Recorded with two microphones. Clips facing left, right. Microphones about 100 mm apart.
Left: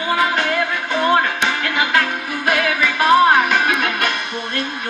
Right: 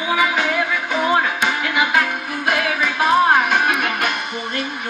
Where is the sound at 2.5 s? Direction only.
90° left.